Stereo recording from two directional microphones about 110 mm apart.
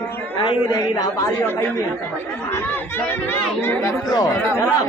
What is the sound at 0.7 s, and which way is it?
Speech, 35° left (ahead or behind).